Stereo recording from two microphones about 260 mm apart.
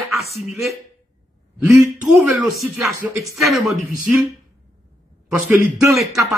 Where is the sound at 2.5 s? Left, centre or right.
Centre.